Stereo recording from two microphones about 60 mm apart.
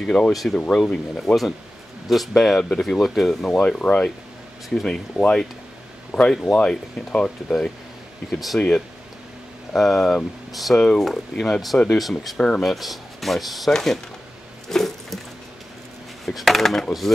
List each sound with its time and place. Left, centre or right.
0.0 s speech: centre
0.3 s speech: centre
0.6 s speech: centre
3.4 s speech: centre
8.3 s speech: centre
8.5 s speech: centre
12.4 s speech: centre
12.6 s speech: centre
14.7 s a sound: centre
16.3 s speech: centre